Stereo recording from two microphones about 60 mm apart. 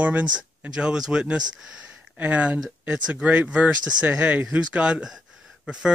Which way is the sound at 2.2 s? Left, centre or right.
Right.